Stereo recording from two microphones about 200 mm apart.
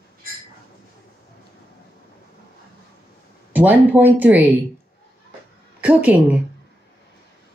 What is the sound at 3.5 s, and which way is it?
Speech, 10° right (ahead or behind).